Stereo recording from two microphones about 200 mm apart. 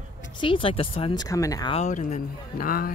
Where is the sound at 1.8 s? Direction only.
40° left (ahead or behind).